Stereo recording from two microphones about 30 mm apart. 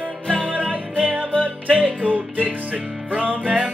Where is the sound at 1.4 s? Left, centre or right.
Right.